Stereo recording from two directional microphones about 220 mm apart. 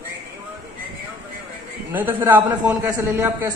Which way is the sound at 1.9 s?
10° right (ahead or behind).